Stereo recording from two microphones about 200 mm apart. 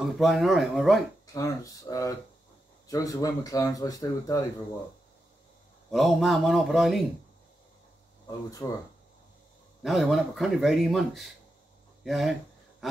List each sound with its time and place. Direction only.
0.0 s a man's voice: centre (ahead or behind)
1.2 s speech: 15° left (ahead or behind)
5.9 s a man's voice: centre (ahead or behind)
8.3 s speech: 20° left (ahead or behind)
9.8 s a man's voice: centre (ahead or behind)